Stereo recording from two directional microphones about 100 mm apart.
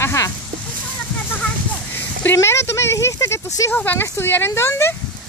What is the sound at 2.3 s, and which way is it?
Speech, 25° left (ahead or behind).